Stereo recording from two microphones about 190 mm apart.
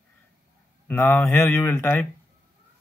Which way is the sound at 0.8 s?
10° left (ahead or behind).